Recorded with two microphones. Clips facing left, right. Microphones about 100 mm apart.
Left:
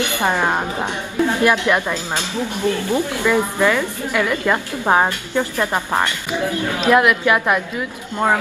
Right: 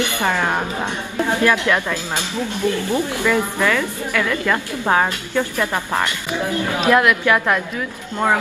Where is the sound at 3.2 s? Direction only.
15° left (ahead or behind).